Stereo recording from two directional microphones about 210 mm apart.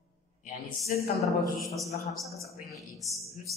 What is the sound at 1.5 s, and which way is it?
Speech, centre (ahead or behind).